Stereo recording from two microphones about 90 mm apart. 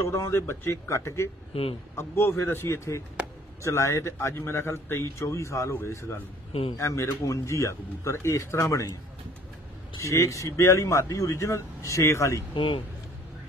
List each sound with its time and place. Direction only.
0.0 s a man's voice: 35° left (ahead or behind)
1.5 s speech: 90° left
2.0 s a man's voice: 25° left (ahead or behind)
9.9 s a man's voice: 35° left (ahead or behind)
12.5 s speech: 80° left